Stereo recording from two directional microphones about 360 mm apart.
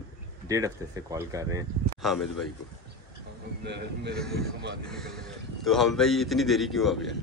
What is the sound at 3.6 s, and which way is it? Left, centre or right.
Speech, right.